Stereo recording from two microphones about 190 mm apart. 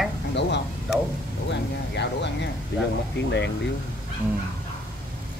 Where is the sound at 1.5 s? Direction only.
65° left (ahead or behind).